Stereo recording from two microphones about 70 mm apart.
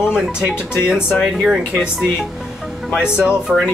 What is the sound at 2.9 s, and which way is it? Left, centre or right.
Speech, centre.